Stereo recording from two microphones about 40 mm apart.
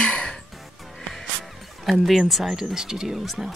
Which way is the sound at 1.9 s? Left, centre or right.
Centre.